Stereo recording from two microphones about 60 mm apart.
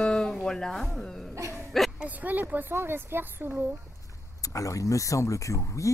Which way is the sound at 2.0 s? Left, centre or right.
Right.